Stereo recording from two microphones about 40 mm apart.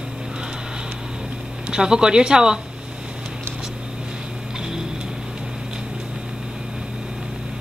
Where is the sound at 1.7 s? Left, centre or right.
Centre.